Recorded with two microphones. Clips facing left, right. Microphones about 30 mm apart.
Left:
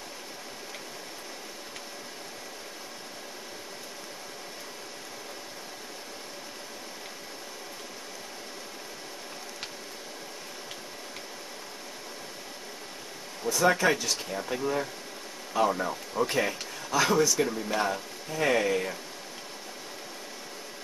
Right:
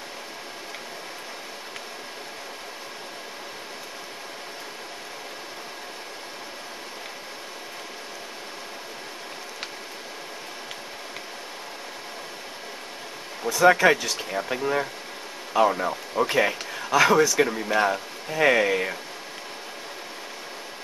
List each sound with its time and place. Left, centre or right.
13.4 s speech: right